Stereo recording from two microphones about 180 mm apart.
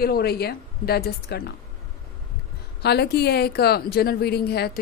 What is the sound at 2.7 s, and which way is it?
A woman's voice, 65° left (ahead or behind).